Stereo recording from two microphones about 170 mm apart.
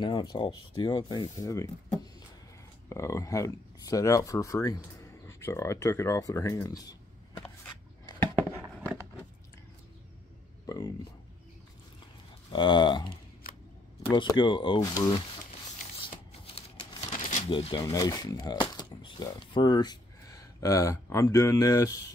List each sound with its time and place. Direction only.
0.0 s speech: 25° left (ahead or behind)
2.9 s speech: 15° left (ahead or behind)
12.5 s speech: 25° left (ahead or behind)
13.1 s a sound: 60° left (ahead or behind)
14.1 s speech: 25° left (ahead or behind)
16.0 s a sound: 30° left (ahead or behind)
17.2 s shuffling cards: 45° left (ahead or behind)
17.5 s speech: 30° left (ahead or behind)